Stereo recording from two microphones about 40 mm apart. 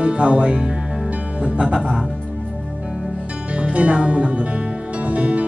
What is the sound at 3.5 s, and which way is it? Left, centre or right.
Music, right.